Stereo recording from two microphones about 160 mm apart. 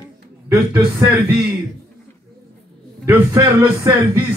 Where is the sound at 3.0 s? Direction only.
20° right (ahead or behind).